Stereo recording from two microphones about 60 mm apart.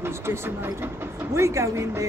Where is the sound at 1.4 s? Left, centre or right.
Right.